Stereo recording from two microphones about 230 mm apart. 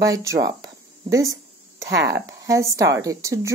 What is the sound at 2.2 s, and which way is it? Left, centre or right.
Speech, centre.